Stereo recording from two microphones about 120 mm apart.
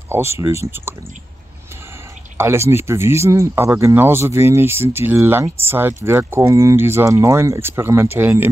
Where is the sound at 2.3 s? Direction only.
20° right (ahead or behind).